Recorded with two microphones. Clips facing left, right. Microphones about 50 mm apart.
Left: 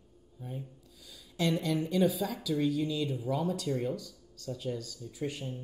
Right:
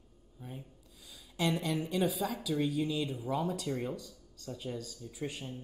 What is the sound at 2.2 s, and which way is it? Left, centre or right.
Speech, centre.